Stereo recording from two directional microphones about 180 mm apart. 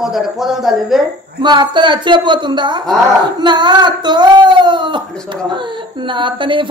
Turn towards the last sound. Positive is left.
turn(degrees=-25)  # may be behind; listen again after turning